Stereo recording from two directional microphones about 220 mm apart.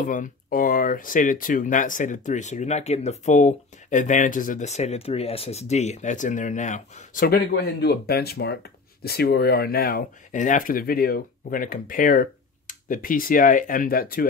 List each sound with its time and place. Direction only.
0.0 s speech: 35° left (ahead or behind)